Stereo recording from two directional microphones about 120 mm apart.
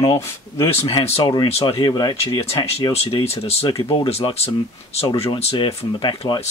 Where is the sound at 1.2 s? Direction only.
40° left (ahead or behind).